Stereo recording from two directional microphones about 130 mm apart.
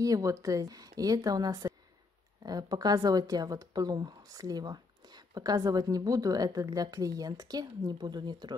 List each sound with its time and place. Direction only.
0.0 s a woman's voice: 25° right (ahead or behind)